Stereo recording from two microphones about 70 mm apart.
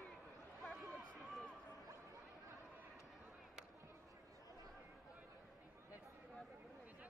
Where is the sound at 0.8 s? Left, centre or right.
Centre.